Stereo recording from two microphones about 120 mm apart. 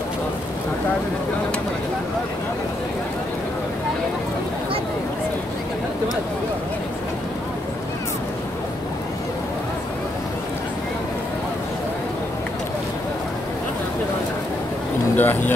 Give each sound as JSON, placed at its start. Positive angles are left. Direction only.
{"t": 15.1, "sound": "speech", "side_deg": 15}